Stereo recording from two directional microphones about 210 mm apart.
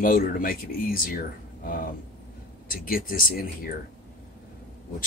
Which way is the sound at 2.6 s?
40° left (ahead or behind).